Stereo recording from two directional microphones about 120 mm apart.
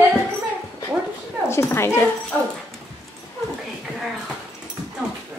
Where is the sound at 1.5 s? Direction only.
20° left (ahead or behind).